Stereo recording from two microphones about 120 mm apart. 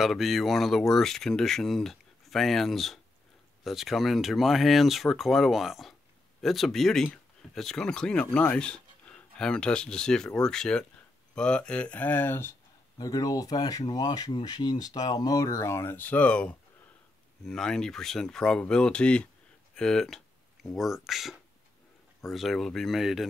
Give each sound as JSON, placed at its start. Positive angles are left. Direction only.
{"t": 0.0, "sound": "speech", "side_deg": 0}
{"t": 12.9, "sound": "speech", "side_deg": 30}